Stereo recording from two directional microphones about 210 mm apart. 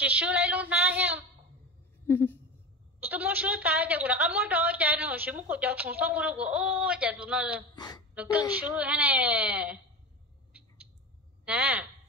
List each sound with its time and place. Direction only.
0.0 s a woman's voice: 5° right (ahead or behind)
2.0 s speech: 10° left (ahead or behind)
3.0 s a woman's voice: 10° right (ahead or behind)
7.7 s a woman's voice: 20° left (ahead or behind)
8.1 s a woman's voice: 5° right (ahead or behind)
11.4 s a woman's voice: 5° right (ahead or behind)